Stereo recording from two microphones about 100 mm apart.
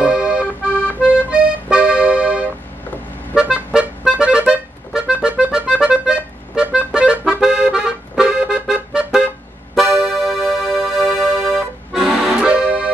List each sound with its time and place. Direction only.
0.0 s music: 10° right (ahead or behind)
0.7 s accordion: 15° left (ahead or behind)
1.1 s accordion: 15° right (ahead or behind)
10.2 s music: centre (ahead or behind)